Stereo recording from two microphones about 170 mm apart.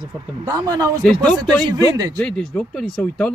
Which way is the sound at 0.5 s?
20° right (ahead or behind).